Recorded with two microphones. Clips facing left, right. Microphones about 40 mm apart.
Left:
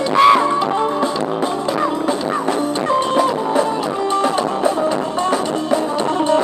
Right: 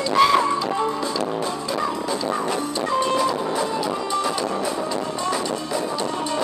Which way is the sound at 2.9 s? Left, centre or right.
Left.